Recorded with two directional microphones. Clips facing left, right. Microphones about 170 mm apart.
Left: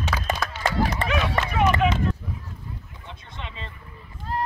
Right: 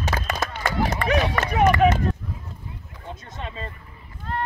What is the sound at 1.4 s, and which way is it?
Speech, 45° right (ahead or behind).